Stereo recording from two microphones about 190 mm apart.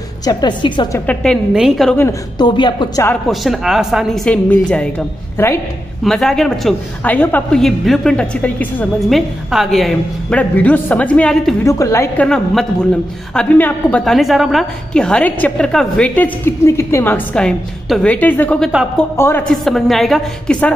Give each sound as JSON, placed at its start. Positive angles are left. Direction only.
{"t": 0.2, "sound": "a woman's voice", "side_deg": 20}
{"t": 0.9, "sound": "a woman's voice", "side_deg": 5}
{"t": 2.0, "sound": "a woman's voice", "side_deg": 20}
{"t": 3.3, "sound": "a woman's voice", "side_deg": 0}
{"t": 6.0, "sound": "a woman's voice", "side_deg": 0}
{"t": 13.3, "sound": "a woman's voice", "side_deg": 5}
{"t": 18.7, "sound": "a woman's voice", "side_deg": -5}
{"t": 19.1, "sound": "a woman's voice", "side_deg": 10}